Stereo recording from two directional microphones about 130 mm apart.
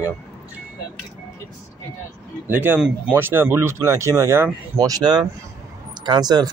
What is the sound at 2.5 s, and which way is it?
Speech, 15° right (ahead or behind).